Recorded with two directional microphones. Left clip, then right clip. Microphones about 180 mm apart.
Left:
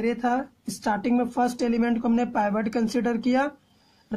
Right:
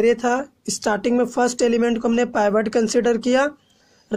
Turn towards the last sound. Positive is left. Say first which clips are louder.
# right 7 dB
turn(degrees=-20)  # may be behind; listen again after turning